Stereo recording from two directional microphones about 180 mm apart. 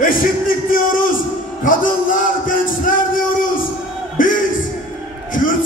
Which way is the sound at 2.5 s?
50° left (ahead or behind).